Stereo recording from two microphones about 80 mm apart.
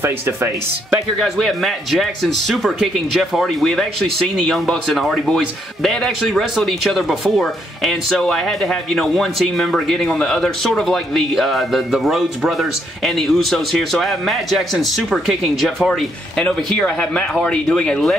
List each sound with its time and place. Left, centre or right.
1.2 s speech: centre
16.4 s speech: centre